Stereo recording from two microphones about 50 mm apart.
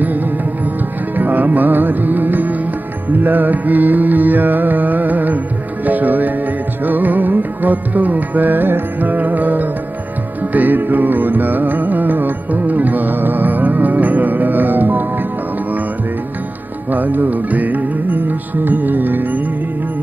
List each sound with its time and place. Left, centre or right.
1.1 s music: right
16.9 s music: right